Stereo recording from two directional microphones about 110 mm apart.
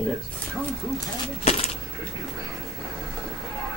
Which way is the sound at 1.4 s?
70° left (ahead or behind).